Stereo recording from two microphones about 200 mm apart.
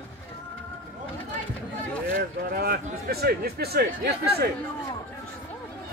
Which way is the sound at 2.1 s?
50° right (ahead or behind).